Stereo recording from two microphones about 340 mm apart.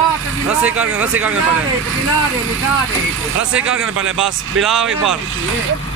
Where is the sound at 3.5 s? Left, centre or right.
Centre.